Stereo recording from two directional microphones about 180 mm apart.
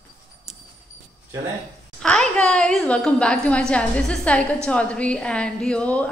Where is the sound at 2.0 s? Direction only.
5° left (ahead or behind).